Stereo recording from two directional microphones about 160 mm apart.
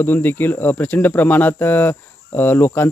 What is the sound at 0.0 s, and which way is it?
Speech, 15° left (ahead or behind).